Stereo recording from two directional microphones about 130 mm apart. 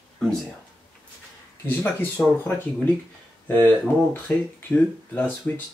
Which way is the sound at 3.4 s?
15° left (ahead or behind).